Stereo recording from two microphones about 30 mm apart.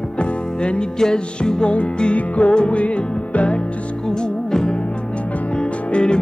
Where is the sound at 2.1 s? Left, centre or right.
Left.